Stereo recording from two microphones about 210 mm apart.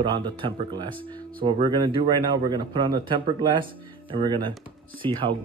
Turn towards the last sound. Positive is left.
turn(degrees=-25)  # may be behind; listen again after turning